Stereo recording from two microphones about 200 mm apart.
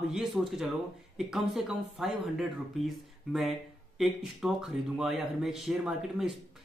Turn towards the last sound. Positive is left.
turn(degrees=0)  # may be behind; listen again after turning